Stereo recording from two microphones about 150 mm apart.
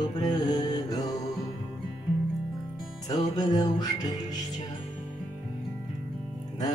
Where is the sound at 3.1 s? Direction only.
25° left (ahead or behind).